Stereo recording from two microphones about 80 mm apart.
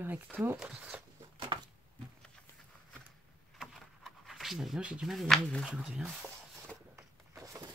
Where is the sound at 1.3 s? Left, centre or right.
Right.